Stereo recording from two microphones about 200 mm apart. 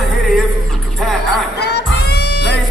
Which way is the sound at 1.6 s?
55° left (ahead or behind).